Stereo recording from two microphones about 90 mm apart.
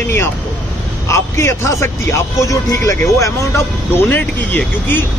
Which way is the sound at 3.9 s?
20° left (ahead or behind).